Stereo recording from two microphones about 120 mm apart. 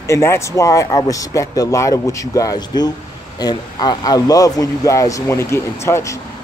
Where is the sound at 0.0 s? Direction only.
25° left (ahead or behind).